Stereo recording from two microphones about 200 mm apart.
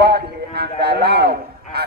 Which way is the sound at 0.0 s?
55° right (ahead or behind).